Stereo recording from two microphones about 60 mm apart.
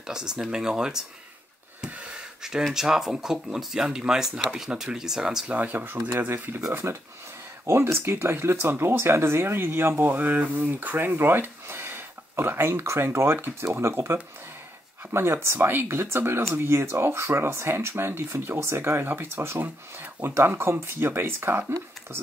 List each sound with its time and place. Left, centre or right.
0.0 s speech: centre
5.5 s speech: right